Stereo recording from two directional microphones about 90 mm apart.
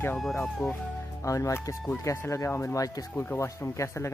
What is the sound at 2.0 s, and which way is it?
Speech, 35° left (ahead or behind).